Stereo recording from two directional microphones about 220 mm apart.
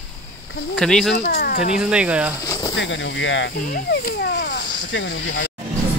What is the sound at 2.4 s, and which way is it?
Speech, 15° left (ahead or behind).